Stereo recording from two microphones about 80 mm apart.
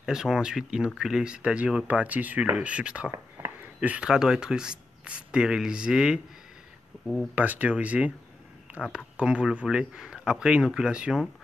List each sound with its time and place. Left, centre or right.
0.0 s speech: centre
4.1 s speech: centre
7.3 s speech: centre